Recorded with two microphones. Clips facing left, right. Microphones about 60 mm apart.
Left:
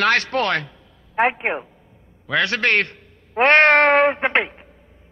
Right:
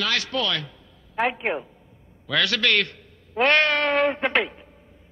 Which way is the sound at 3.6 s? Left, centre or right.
Left.